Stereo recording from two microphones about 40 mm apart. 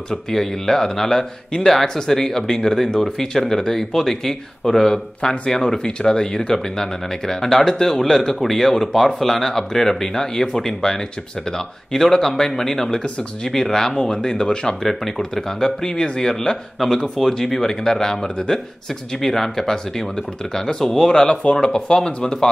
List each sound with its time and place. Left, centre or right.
0.1 s speech: centre